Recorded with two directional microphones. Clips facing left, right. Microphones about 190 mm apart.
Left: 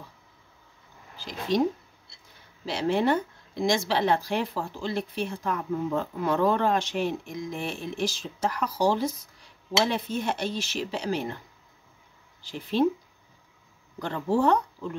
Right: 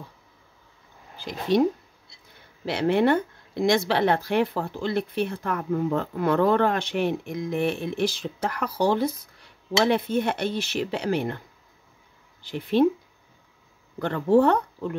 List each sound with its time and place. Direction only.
1.1 s speech: 55° right (ahead or behind)
2.6 s speech: 60° right (ahead or behind)
12.4 s speech: 60° right (ahead or behind)
13.9 s speech: 60° right (ahead or behind)